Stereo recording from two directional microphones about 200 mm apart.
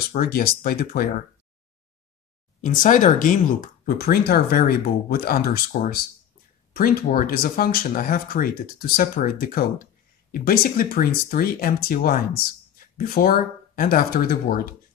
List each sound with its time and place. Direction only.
0.1 s speech: 45° left (ahead or behind)
2.6 s speech: 40° left (ahead or behind)